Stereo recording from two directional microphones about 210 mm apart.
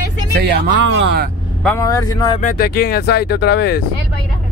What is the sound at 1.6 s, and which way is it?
Speech, 15° left (ahead or behind).